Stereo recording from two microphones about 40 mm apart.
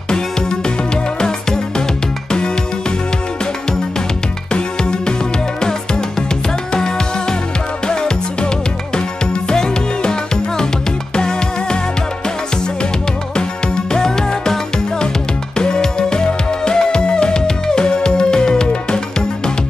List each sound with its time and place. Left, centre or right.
4.5 s music: left
13.9 s music: centre